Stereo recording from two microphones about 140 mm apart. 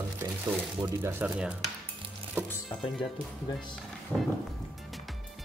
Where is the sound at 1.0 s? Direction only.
15° right (ahead or behind).